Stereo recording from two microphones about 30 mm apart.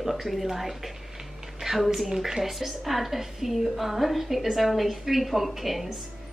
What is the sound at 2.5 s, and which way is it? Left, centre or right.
A woman's voice, centre.